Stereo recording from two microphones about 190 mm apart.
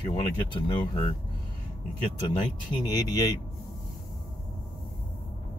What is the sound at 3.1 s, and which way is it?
Speech, 20° left (ahead or behind).